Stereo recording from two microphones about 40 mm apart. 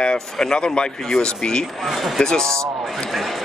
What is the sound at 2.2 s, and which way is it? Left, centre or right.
Speech, centre.